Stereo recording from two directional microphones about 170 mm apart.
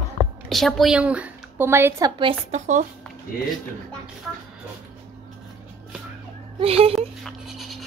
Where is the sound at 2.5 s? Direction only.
45° right (ahead or behind).